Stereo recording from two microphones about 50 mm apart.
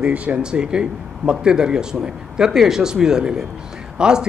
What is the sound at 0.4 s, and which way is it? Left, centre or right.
Speech, centre.